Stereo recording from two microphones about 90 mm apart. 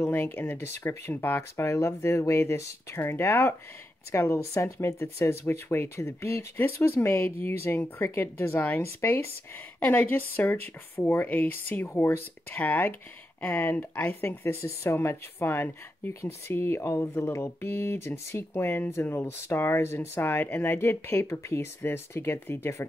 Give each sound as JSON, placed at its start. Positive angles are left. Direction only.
{"t": 0.0, "sound": "speech", "side_deg": 25}
{"t": 9.8, "sound": "speech", "side_deg": 20}
{"t": 14.4, "sound": "speech", "side_deg": 30}